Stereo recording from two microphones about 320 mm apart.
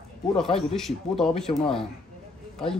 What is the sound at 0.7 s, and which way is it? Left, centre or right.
A man's voice, centre.